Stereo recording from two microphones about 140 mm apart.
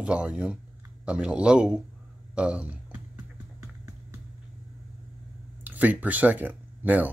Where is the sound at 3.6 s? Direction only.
20° right (ahead or behind).